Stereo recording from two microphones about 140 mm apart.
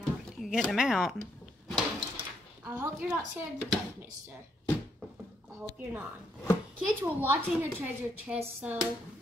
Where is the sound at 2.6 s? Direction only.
15° right (ahead or behind).